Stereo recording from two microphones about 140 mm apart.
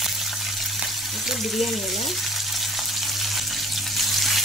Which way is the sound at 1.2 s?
Centre (ahead or behind).